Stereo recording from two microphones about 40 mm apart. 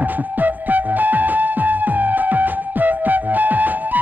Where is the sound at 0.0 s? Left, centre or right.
Right.